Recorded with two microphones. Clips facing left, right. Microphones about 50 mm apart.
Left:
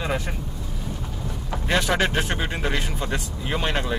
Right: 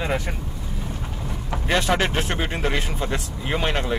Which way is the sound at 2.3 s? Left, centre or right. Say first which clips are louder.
Right 2 dB; right.